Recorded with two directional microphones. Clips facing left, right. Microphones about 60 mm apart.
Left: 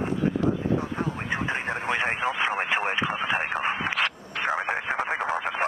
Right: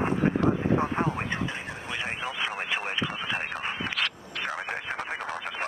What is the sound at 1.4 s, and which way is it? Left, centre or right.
Radio, left.